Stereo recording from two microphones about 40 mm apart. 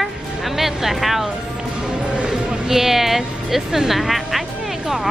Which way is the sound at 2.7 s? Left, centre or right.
Centre.